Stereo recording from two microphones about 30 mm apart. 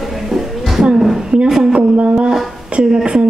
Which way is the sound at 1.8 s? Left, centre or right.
Right.